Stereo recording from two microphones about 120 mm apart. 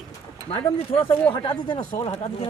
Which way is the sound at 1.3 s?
45° left (ahead or behind).